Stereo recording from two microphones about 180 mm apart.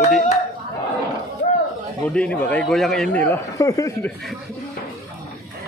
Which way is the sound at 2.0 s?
5° left (ahead or behind).